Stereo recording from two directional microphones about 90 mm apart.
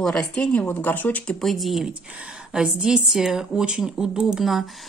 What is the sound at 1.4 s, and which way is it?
A woman's voice, centre (ahead or behind).